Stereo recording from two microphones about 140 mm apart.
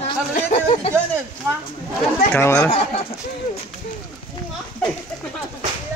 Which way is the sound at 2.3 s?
20° left (ahead or behind).